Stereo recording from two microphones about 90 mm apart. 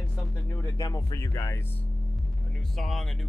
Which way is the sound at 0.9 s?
40° left (ahead or behind).